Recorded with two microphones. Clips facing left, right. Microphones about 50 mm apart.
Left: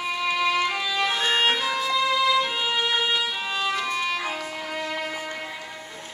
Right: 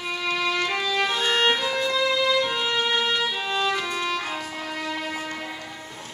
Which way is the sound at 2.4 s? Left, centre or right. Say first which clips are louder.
Even; centre.